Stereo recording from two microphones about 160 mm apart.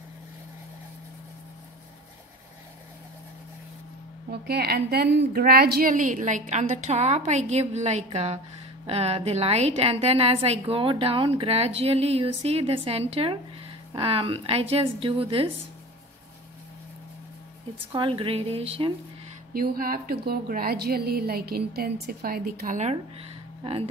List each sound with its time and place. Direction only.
4.3 s a woman's voice: 80° right; by 15.5 s 35° right (ahead or behind)
17.9 s speech: 30° right (ahead or behind)
19.5 s a woman's voice: 65° right (ahead or behind)
22.8 s speech: 40° right (ahead or behind)